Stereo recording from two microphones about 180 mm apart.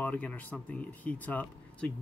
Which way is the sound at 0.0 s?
10° left (ahead or behind).